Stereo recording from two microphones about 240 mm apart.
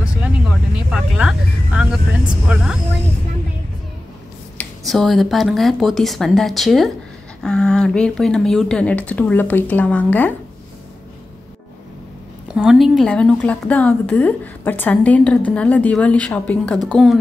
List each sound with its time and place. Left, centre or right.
0.2 s vehicle: centre
2.4 s a woman's voice: centre
4.6 s a woman's voice: centre
12.5 s a woman's voice: centre